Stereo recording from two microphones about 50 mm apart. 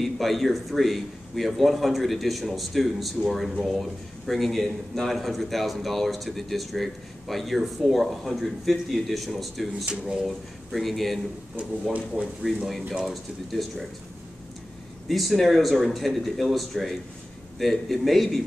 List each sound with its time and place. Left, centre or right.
0.0 s a man's voice: centre
12.2 s speech: right
12.9 s a man's voice: centre
15.0 s a man's voice: centre